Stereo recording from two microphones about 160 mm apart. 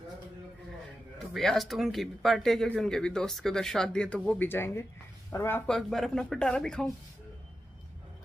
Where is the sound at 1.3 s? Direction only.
Centre (ahead or behind); by 5.6 s 15° left (ahead or behind).